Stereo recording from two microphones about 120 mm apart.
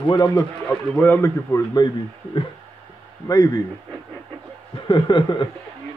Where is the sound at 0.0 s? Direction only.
35° left (ahead or behind).